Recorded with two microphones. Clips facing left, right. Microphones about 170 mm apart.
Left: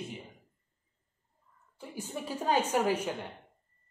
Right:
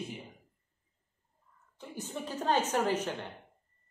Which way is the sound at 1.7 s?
10° left (ahead or behind).